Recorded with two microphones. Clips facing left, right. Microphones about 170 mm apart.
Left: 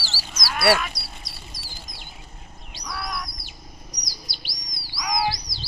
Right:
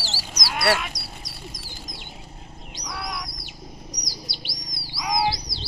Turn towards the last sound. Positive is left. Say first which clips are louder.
# right 1 dB
turn(degrees=-25)  # may be behind; listen again after turning